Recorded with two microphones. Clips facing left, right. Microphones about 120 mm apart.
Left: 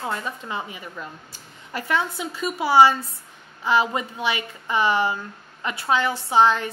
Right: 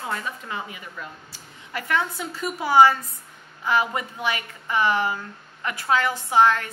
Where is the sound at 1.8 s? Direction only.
20° left (ahead or behind).